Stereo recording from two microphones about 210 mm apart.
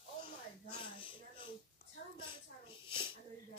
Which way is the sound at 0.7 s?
25° left (ahead or behind).